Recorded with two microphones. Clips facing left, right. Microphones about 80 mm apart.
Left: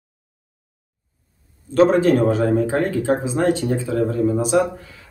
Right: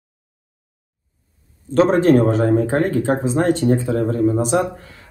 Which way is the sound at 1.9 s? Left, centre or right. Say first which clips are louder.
Right 2 dB; right.